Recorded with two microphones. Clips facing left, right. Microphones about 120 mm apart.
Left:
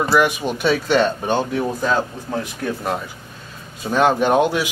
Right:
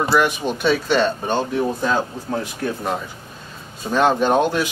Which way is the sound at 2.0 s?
15° right (ahead or behind).